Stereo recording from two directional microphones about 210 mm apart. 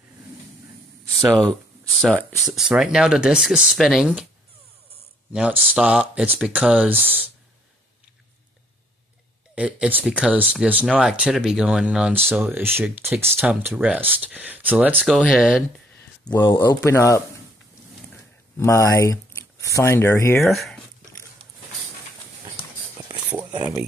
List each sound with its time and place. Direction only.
1.3 s speech: centre (ahead or behind)
5.3 s speech: 5° right (ahead or behind)
9.6 s speech: 5° right (ahead or behind)
16.0 s speech: 20° left (ahead or behind)
18.6 s speech: 15° left (ahead or behind)
20.4 s speech: centre (ahead or behind)
23.3 s speech: 10° right (ahead or behind)